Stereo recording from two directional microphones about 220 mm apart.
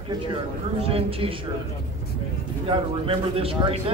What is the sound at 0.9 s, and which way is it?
Speech, 25° right (ahead or behind).